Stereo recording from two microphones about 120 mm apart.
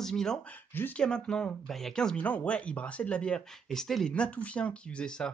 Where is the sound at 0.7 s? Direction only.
15° left (ahead or behind).